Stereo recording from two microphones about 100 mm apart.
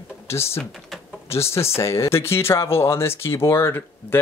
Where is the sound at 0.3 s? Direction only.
25° left (ahead or behind).